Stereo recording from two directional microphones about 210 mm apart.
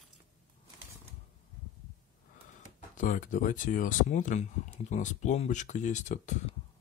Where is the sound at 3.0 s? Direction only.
40° left (ahead or behind).